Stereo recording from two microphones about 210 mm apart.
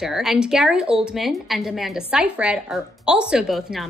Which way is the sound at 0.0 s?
Centre (ahead or behind).